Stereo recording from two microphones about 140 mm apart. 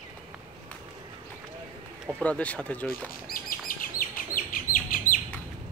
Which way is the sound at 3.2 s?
90° left.